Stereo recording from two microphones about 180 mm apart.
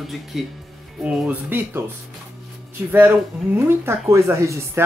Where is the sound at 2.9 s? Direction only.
10° right (ahead or behind).